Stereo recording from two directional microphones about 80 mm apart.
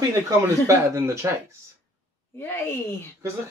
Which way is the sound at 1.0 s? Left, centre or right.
Right.